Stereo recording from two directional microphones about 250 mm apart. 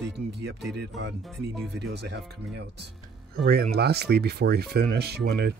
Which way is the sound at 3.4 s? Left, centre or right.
Right.